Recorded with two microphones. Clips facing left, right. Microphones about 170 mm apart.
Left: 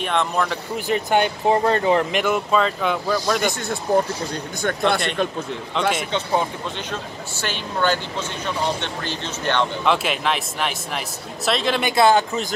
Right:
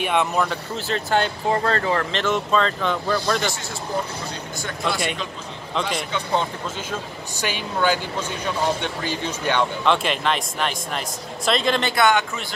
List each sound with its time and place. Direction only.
0.0 s speech: 10° right (ahead or behind)
0.7 s speech: 15° left (ahead or behind)
4.6 s a man's voice: 55° left (ahead or behind)
5.8 s speech: centre (ahead or behind)
9.8 s speech: 5° left (ahead or behind)
11.9 s speech: 30° left (ahead or behind)